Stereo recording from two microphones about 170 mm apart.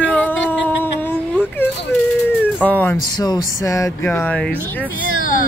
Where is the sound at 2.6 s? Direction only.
10° left (ahead or behind).